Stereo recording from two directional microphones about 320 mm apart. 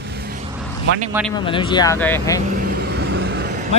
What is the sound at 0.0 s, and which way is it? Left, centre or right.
Vehicle, right.